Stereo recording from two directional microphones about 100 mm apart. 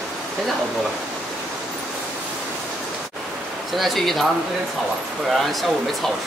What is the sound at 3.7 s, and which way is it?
Speech, centre (ahead or behind).